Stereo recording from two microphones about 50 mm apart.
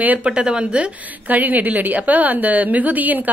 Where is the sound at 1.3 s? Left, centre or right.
Right.